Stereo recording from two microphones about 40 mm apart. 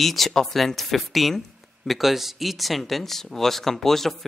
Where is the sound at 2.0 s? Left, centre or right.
Centre.